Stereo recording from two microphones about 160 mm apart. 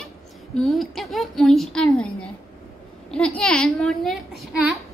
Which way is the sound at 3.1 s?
5° left (ahead or behind).